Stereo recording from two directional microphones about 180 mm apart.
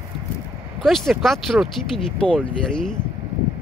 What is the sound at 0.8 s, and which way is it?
Speech, centre (ahead or behind).